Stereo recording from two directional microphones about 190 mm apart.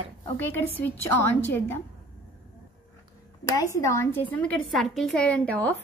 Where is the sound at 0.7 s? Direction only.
10° left (ahead or behind).